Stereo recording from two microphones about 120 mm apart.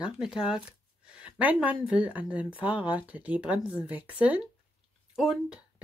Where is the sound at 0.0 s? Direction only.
5° right (ahead or behind).